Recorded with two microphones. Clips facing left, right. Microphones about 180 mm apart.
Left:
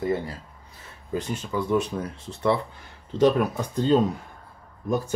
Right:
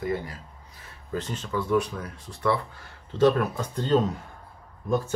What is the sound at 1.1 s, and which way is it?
Speech, 10° left (ahead or behind).